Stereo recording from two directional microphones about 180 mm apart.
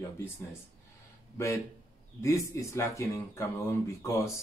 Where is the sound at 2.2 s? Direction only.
15° left (ahead or behind).